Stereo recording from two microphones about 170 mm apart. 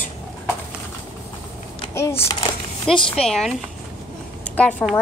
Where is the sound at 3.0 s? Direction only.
5° left (ahead or behind).